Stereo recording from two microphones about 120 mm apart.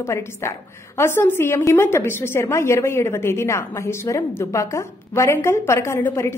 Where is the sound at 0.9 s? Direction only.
20° left (ahead or behind).